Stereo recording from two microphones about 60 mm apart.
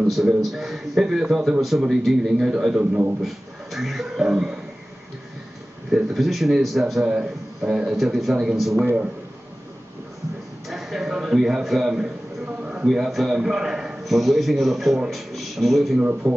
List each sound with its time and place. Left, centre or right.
0.0 s a man's voice: centre
2.7 s a man's voice: right
3.2 s a man's voice: centre
5.9 s a man's voice: centre
10.7 s a man's voice: centre
16.0 s a man's voice: right